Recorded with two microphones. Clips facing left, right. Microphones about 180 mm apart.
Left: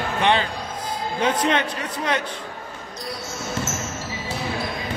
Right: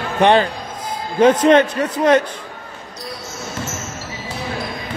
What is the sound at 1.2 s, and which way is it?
A man's voice, 45° right (ahead or behind).